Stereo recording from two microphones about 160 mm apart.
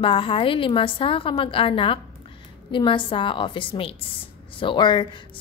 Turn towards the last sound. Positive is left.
turn(degrees=30)  # may be behind; listen again after turning